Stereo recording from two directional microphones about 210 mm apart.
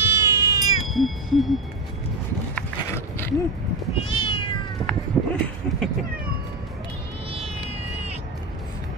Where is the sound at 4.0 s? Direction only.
25° left (ahead or behind).